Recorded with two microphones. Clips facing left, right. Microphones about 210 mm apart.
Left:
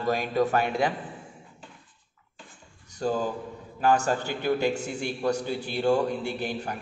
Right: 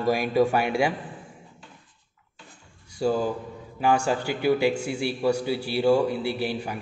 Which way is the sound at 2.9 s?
10° right (ahead or behind).